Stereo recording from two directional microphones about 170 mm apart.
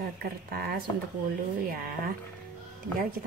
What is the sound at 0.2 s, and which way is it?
A woman's voice, 65° right (ahead or behind).